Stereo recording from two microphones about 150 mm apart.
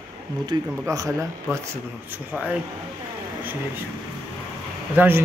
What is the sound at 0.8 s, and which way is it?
Speech, 20° right (ahead or behind).